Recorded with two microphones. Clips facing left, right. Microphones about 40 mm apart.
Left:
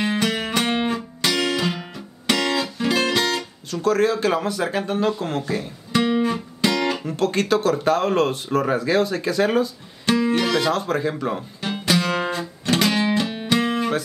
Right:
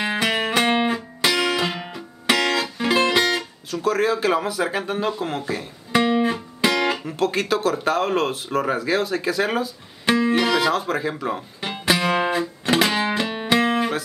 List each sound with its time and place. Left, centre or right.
0.0 s music: centre
3.7 s speech: centre
5.9 s music: centre
7.0 s speech: centre
11.6 s music: centre